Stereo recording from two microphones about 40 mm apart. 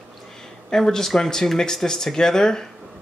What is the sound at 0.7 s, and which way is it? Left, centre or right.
Speech, centre.